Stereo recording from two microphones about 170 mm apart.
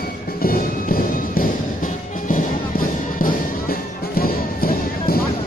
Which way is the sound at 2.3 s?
55° left (ahead or behind).